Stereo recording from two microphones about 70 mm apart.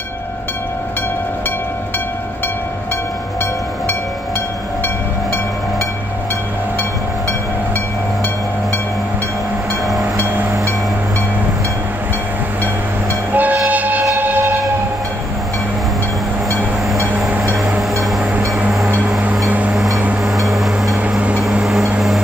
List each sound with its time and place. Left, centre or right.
10.2 s vehicle: right
13.3 s music: right
14.1 s train: right
17.6 s music: centre
19.7 s vehicle: centre
20.2 s a sound: centre
21.4 s vehicle: centre